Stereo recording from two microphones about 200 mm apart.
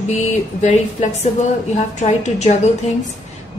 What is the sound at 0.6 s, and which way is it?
Speech, 35° left (ahead or behind).